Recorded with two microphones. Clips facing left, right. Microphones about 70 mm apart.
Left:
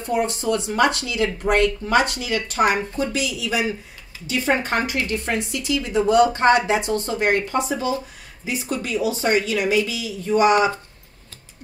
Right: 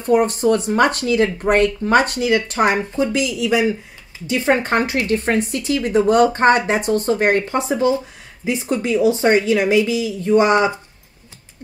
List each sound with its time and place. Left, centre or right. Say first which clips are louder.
0.0 s a woman's voice: right 7 dB; right